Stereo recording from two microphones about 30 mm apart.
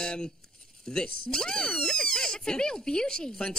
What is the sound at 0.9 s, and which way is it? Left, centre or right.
Speech, left.